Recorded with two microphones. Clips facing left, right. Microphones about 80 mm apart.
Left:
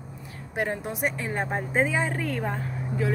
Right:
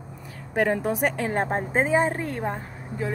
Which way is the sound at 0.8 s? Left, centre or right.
Right.